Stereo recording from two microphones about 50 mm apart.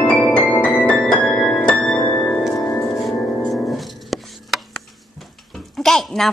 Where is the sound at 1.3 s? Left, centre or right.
Centre.